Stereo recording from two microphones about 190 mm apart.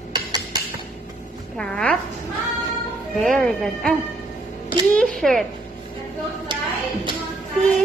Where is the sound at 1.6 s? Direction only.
5° left (ahead or behind).